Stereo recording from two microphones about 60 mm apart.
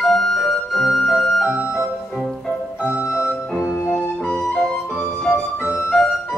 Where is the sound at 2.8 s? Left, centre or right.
Centre.